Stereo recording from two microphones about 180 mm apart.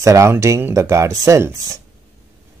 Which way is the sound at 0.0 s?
15° right (ahead or behind).